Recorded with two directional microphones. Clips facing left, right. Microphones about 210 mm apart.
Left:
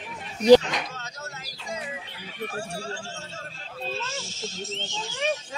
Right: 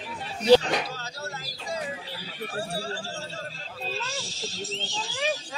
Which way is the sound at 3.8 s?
35° right (ahead or behind).